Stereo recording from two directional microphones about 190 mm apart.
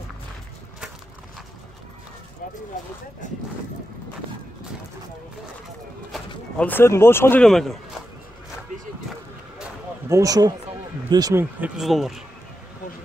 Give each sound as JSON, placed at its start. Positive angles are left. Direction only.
{"t": 3.2, "sound": "speech", "side_deg": 40}
{"t": 6.1, "sound": "speech", "side_deg": 10}
{"t": 10.0, "sound": "speech", "side_deg": -15}
{"t": 11.6, "sound": "speech", "side_deg": 0}